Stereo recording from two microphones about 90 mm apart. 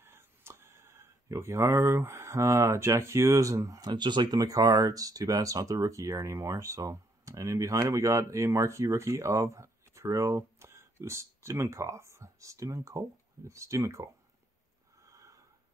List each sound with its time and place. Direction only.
0.0 s speech: 25° right (ahead or behind)
15.0 s snort: 40° right (ahead or behind)